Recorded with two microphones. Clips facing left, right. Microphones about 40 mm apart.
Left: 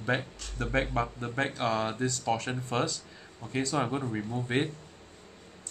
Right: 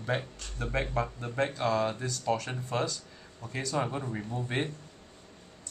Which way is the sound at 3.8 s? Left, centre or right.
Centre.